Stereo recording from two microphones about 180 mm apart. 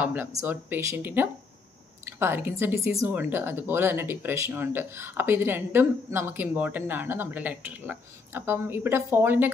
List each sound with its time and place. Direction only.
0.0 s speech: 10° right (ahead or behind)